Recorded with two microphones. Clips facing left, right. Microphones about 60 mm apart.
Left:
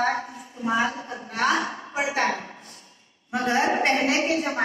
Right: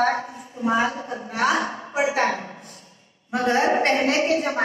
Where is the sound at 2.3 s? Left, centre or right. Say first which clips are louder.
Right 2 dB; right.